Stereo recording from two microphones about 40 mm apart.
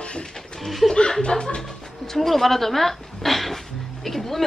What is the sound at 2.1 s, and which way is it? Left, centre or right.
A woman's voice, centre.